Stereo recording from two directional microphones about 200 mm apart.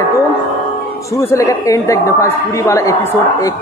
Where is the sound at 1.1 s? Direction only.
15° left (ahead or behind).